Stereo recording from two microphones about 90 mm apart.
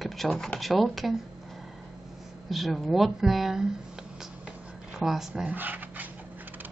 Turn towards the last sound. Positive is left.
turn(degrees=-20)  # may be behind; listen again after turning